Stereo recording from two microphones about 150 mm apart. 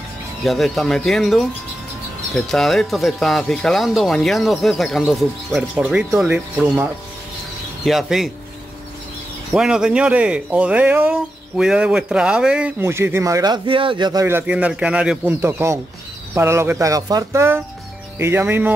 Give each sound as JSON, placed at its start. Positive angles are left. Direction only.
{"t": 0.4, "sound": "speech", "side_deg": 0}
{"t": 9.5, "sound": "speech", "side_deg": -5}
{"t": 14.2, "sound": "speech", "side_deg": -10}